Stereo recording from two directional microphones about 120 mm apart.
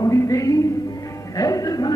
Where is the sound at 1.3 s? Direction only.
30° left (ahead or behind).